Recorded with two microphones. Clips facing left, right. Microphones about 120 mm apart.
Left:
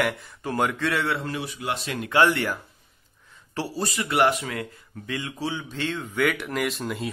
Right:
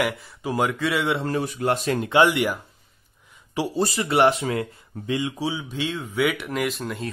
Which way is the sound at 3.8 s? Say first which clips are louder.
Right 3 dB; 30° right (ahead or behind).